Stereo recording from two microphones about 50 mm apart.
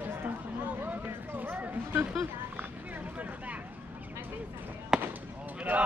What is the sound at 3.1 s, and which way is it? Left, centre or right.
Vehicle, right.